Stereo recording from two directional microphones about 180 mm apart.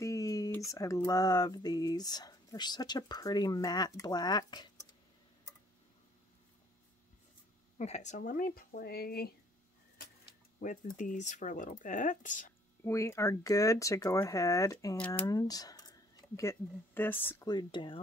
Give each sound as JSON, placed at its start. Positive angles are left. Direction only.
{"t": 0.0, "sound": "speech", "side_deg": 20}
{"t": 7.7, "sound": "speech", "side_deg": 40}
{"t": 11.0, "sound": "speech", "side_deg": 45}
{"t": 12.8, "sound": "speech", "side_deg": 15}
{"t": 15.2, "sound": "speech", "side_deg": 20}
{"t": 17.5, "sound": "speech", "side_deg": 25}